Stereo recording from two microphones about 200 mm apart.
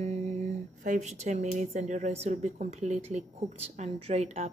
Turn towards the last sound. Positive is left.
turn(degrees=-35)  # may be behind; listen again after turning